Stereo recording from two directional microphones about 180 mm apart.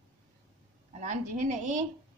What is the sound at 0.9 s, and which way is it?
Speech, 45° right (ahead or behind).